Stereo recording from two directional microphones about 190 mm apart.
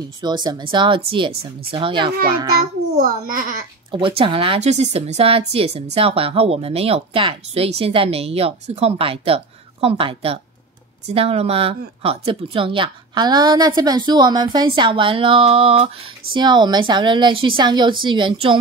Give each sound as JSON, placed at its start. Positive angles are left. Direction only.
{"t": 0.2, "sound": "speech", "side_deg": -20}
{"t": 3.0, "sound": "a child's voice", "side_deg": -45}
{"t": 4.2, "sound": "speech", "side_deg": -30}